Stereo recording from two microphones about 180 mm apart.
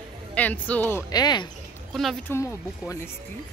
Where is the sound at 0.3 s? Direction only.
10° left (ahead or behind).